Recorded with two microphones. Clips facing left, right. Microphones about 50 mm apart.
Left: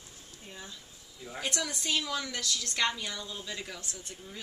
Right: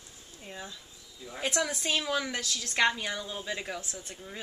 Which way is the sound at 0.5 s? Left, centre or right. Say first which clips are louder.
Right 4 dB; right.